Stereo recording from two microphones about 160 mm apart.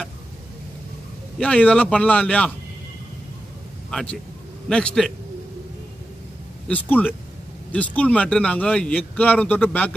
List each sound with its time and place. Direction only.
1.4 s speech: 10° left (ahead or behind)
3.9 s a man's voice: 5° left (ahead or behind)
6.7 s speech: 10° left (ahead or behind)